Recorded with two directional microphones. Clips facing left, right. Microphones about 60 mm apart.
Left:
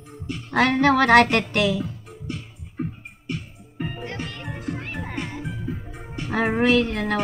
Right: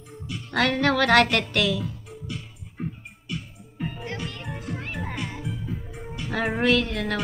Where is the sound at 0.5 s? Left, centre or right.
Left.